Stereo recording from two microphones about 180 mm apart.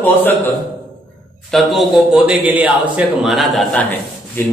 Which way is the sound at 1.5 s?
Centre (ahead or behind).